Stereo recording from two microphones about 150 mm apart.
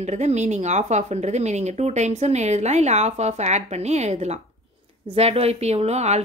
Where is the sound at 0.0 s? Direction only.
50° right (ahead or behind).